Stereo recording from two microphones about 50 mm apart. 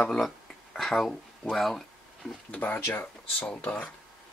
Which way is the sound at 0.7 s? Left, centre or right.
Centre.